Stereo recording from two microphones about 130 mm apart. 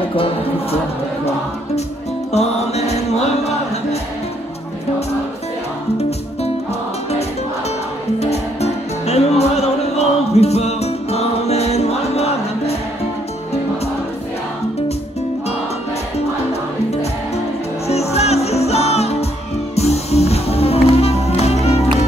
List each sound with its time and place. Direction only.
0.1 s music: 45° left (ahead or behind)
2.3 s music: 55° left (ahead or behind)
5.9 s music: 50° left (ahead or behind)
8.2 s music: 55° left (ahead or behind)
17.8 s music: 55° left (ahead or behind)